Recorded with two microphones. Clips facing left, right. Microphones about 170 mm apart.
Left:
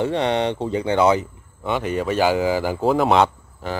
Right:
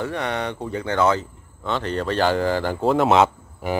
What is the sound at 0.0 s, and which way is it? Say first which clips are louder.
Speech: left 5 dB; 25° left (ahead or behind).